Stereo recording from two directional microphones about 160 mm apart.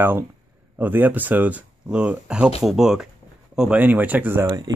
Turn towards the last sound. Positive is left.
turn(degrees=-25)  # may be behind; listen again after turning